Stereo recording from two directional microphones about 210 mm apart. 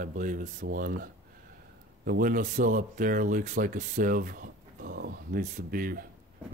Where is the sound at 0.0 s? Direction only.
40° right (ahead or behind).